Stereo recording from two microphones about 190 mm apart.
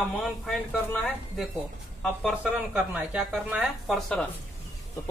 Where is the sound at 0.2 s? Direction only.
5° left (ahead or behind).